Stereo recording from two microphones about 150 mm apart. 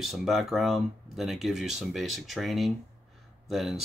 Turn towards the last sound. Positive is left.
turn(degrees=0)  # may be behind; listen again after turning